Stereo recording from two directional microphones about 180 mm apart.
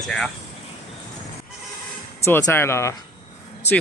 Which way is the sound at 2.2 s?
15° left (ahead or behind).